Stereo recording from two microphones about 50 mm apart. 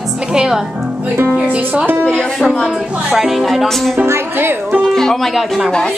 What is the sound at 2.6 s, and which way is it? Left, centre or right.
A woman's voice, centre.